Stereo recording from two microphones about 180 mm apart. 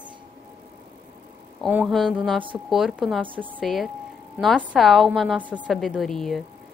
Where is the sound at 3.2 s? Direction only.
30° right (ahead or behind).